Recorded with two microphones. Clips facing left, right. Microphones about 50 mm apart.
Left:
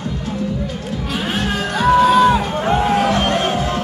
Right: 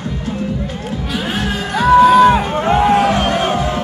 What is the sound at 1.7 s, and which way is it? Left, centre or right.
Music, right.